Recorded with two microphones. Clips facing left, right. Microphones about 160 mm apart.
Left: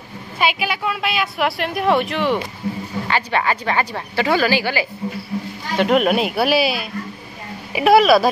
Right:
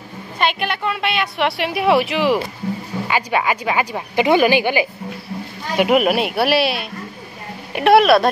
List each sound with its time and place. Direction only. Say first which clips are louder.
0.4 s a woman's voice: even; 5° left (ahead or behind); by 4.8 s 20° right (ahead or behind)
5.8 s a woman's voice: right 1 dB; 5° right (ahead or behind)